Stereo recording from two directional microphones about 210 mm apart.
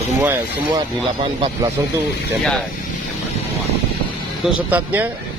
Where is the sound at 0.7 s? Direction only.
20° right (ahead or behind).